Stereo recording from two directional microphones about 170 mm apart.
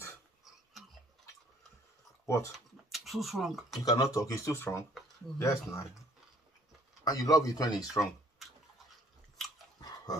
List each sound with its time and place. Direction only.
2.2 s speech: 15° left (ahead or behind)
2.9 s speech: centre (ahead or behind)
3.8 s speech: 20° left (ahead or behind)
7.1 s speech: 20° left (ahead or behind)
9.8 s dog: 25° left (ahead or behind)